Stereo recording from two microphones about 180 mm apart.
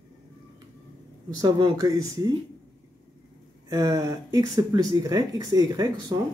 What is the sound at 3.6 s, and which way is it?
Speech, 20° right (ahead or behind).